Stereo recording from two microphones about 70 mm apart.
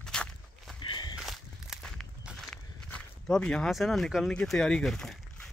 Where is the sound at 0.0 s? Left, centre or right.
Centre.